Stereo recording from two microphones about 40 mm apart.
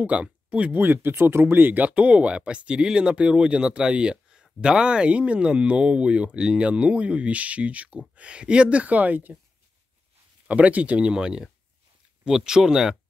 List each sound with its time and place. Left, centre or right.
0.0 s speech: right
0.7 s speech: right
1.4 s speech: right
1.8 s speech: right
10.5 s speech: right
11.1 s speech: centre